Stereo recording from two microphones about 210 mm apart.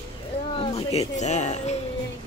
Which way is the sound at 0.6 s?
30° left (ahead or behind).